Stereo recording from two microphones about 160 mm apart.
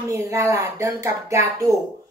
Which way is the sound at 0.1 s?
20° right (ahead or behind).